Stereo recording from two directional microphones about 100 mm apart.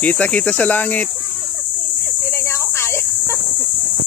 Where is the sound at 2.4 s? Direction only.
25° left (ahead or behind).